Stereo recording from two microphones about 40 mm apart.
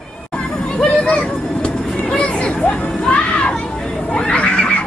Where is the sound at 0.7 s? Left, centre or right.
Left.